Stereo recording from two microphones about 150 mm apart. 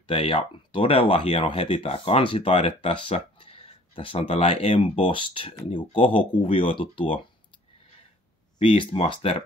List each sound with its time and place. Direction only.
0.0 s speech: 35° left (ahead or behind)
8.5 s speech: 40° left (ahead or behind)